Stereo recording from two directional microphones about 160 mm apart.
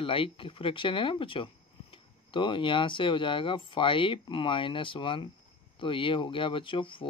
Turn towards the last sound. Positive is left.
turn(degrees=30)  # may be behind; listen again after turning